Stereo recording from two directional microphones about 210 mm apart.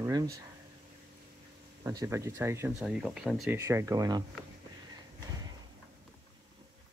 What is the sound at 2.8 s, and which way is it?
Speech, centre (ahead or behind).